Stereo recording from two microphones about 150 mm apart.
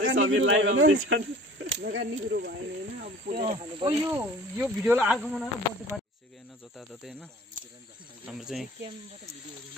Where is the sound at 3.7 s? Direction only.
35° right (ahead or behind).